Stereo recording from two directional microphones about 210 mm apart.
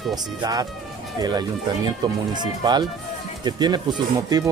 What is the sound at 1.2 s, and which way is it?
Speech, 20° right (ahead or behind).